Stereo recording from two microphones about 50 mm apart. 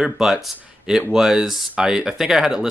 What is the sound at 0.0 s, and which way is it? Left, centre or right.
Speech, centre.